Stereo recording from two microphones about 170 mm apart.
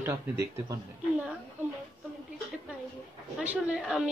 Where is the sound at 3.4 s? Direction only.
5° right (ahead or behind).